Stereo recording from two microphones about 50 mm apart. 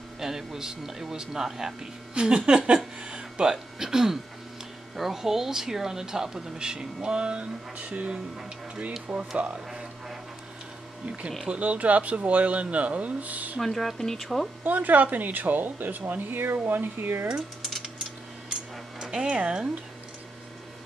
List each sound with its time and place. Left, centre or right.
0.2 s speech: centre; by 8.2 s right
9.1 s speech: centre
11.4 s speech: right
13.6 s speech: centre
14.6 s speech: right
17.6 s a sound: centre
18.9 s speech: centre